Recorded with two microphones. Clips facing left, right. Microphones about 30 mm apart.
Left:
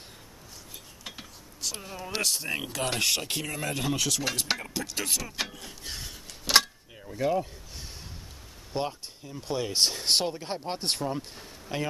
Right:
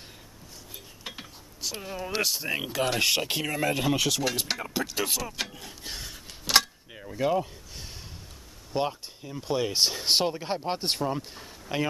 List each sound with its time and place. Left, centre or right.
1.0 s mechanisms: centre
2.1 s speech: centre
5.5 s a sound: centre
7.0 s speech: centre
8.7 s speech: centre